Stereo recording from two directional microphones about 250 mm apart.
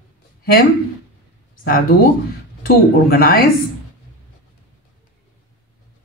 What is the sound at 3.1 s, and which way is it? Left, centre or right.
Speech, left.